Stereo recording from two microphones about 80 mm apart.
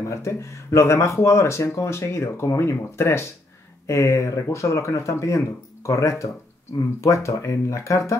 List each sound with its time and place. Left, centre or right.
0.0 s speech: left